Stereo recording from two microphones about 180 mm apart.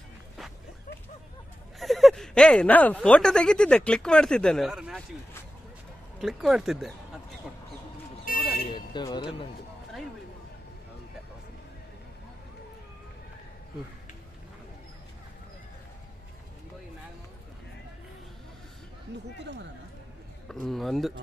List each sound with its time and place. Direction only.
1.8 s speech: centre (ahead or behind)
6.1 s speech: centre (ahead or behind)
8.3 s buzzer: 55° left (ahead or behind)
8.7 s a sound: 25° left (ahead or behind)
19.3 s speech: 70° right (ahead or behind)
20.4 s speech: centre (ahead or behind)